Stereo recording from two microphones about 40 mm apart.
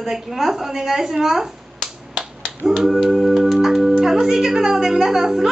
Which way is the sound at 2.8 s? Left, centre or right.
Centre.